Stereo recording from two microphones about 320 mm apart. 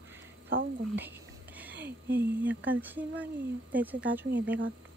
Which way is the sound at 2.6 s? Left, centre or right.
Centre.